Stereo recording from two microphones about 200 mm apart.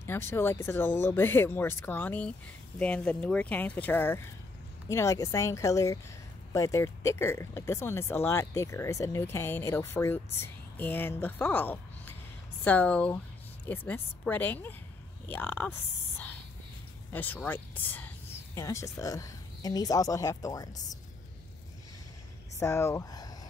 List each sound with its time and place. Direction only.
0.0 s speech: 10° left (ahead or behind)
22.6 s speech: 15° left (ahead or behind)